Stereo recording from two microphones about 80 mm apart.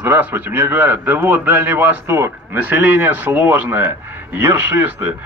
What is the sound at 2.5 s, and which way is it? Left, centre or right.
Speech, right.